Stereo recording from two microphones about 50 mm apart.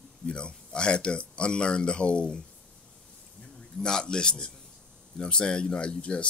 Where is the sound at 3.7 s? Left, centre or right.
Centre.